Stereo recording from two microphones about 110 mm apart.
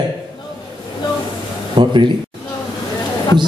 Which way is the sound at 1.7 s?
45° right (ahead or behind).